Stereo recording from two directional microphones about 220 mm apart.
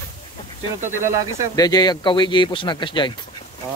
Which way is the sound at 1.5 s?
15° left (ahead or behind).